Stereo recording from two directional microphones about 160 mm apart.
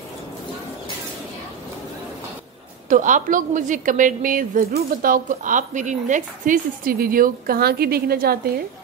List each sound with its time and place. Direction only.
2.9 s a woman's voice: 50° right (ahead or behind); by 8.4 s 70° right (ahead or behind)